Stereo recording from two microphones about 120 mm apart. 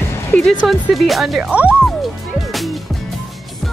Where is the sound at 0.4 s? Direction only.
5° left (ahead or behind).